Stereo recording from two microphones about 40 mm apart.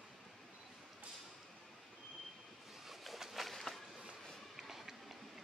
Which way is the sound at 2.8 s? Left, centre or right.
Centre.